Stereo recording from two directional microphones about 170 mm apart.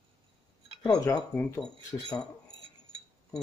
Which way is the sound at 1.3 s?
5° left (ahead or behind).